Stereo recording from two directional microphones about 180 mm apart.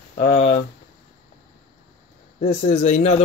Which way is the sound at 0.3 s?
35° left (ahead or behind).